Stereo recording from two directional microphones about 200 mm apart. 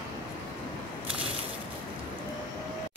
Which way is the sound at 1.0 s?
25° right (ahead or behind).